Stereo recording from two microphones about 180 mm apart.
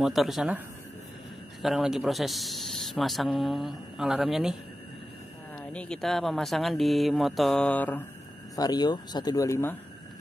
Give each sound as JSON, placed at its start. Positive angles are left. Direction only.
{"t": 0.0, "sound": "speech", "side_deg": 0}
{"t": 1.6, "sound": "speech", "side_deg": 0}
{"t": 5.7, "sound": "speech", "side_deg": 5}
{"t": 8.5, "sound": "speech", "side_deg": 20}